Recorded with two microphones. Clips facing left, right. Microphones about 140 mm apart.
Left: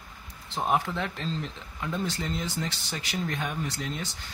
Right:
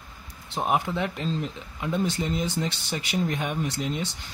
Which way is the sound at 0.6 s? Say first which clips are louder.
Right 2 dB; 15° right (ahead or behind).